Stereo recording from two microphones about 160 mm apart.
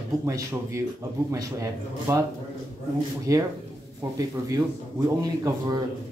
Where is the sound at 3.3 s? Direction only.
20° right (ahead or behind).